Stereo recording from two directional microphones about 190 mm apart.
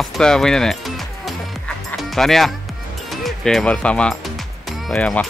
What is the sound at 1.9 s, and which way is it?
Music, centre (ahead or behind).